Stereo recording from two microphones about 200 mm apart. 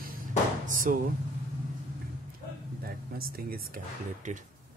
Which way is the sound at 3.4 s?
45° right (ahead or behind).